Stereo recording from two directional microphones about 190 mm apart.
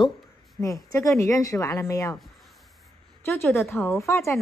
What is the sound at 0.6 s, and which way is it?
A woman's voice, 15° left (ahead or behind).